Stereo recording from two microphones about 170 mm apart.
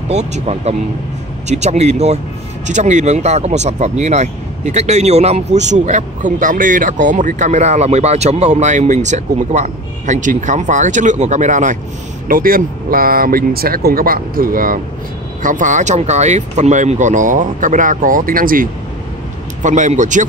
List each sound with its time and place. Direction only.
0.1 s speech: 40° right (ahead or behind)